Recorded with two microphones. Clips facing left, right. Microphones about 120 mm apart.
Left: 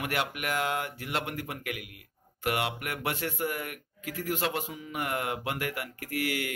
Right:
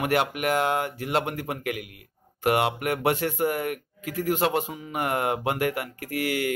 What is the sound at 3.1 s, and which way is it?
A man's voice, 45° right (ahead or behind).